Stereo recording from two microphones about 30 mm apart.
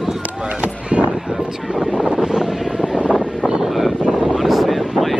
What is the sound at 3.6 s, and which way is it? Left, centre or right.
Wind noise, centre.